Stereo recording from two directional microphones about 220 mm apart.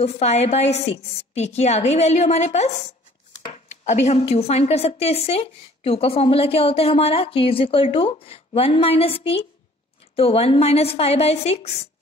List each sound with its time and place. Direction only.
0.0 s a woman's voice: 30° left (ahead or behind)